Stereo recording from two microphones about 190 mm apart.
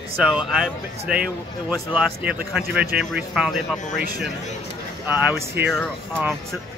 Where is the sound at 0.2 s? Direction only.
5° right (ahead or behind).